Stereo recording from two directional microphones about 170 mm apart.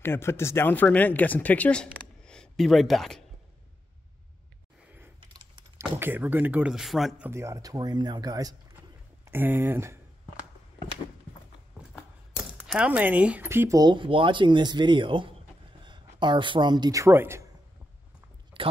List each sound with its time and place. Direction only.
0.0 s speech: 15° left (ahead or behind)
5.2 s keys jangling: 30° right (ahead or behind)
5.8 s speech: 15° right (ahead or behind)
7.2 s speech: 15° right (ahead or behind)
11.9 s a man's voice: 5° right (ahead or behind)
18.6 s speech: 30° right (ahead or behind)